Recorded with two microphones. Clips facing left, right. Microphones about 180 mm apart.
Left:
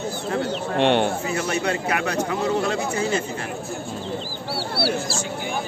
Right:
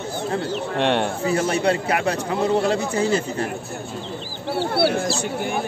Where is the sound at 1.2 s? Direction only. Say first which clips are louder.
Right 4 dB; 30° right (ahead or behind).